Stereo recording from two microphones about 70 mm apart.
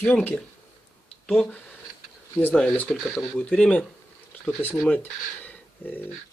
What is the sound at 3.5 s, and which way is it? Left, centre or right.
Speech, centre.